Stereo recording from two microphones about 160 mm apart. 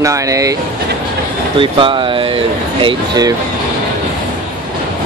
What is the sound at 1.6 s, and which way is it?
Speech, 30° right (ahead or behind).